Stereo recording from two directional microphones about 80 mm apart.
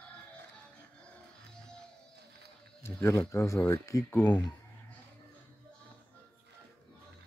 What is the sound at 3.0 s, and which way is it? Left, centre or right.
Speech, left.